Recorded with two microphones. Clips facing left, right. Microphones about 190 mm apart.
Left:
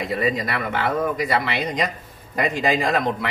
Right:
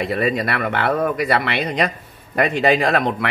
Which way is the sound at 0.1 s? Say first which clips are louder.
Right 3 dB; 65° right (ahead or behind).